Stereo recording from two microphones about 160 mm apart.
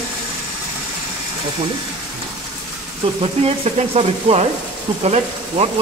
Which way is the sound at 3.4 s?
40° right (ahead or behind).